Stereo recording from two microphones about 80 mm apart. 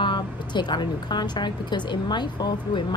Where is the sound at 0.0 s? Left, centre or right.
Left.